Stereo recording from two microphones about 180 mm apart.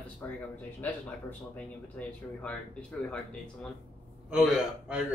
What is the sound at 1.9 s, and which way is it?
Speech, 5° left (ahead or behind).